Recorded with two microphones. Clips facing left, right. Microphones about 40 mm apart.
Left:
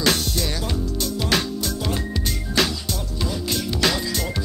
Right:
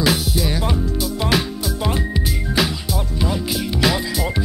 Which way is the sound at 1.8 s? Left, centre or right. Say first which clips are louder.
Right 4 dB; centre.